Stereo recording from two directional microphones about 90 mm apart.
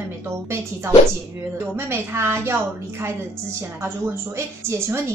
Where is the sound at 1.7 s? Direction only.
30° right (ahead or behind).